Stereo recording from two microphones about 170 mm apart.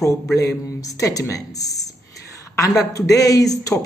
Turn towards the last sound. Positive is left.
turn(degrees=20)  # may be behind; listen again after turning